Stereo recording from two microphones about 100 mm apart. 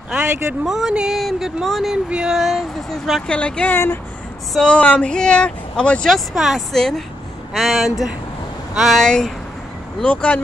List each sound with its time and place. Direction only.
0.7 s speech: 5° right (ahead or behind); by 3.7 s 10° left (ahead or behind)
3.7 s speech: 25° left (ahead or behind)
4.6 s speech: 10° left (ahead or behind)